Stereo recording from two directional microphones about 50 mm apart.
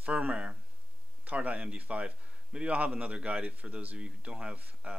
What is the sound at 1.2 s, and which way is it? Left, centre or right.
A man's voice, right.